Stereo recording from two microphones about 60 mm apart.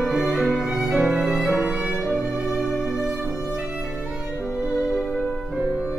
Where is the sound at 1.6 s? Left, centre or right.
Centre.